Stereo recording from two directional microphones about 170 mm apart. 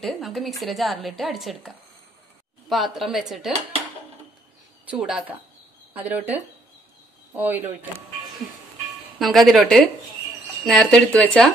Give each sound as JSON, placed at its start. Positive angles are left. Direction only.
{"t": 0.0, "sound": "a woman's voice", "side_deg": 0}
{"t": 2.7, "sound": "a woman's voice", "side_deg": 0}
{"t": 4.8, "sound": "speech", "side_deg": -5}
{"t": 9.2, "sound": "a woman's voice", "side_deg": 0}